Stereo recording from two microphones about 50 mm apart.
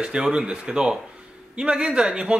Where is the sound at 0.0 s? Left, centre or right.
Centre.